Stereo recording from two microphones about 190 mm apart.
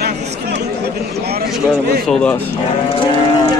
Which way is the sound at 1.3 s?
55° right (ahead or behind).